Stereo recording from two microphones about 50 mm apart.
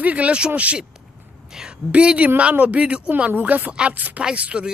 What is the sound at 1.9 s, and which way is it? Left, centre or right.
Speech, right.